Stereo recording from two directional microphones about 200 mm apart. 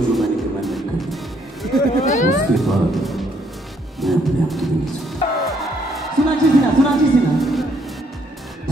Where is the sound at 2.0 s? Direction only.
35° left (ahead or behind).